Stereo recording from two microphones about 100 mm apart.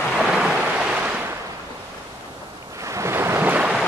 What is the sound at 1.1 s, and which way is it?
Waves, 20° right (ahead or behind).